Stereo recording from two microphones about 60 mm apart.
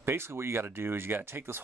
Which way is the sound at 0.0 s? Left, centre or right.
Right.